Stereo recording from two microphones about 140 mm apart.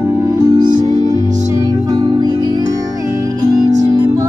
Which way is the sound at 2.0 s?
30° right (ahead or behind).